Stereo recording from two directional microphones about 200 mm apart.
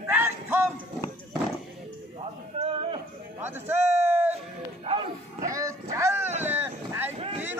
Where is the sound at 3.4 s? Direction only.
10° right (ahead or behind).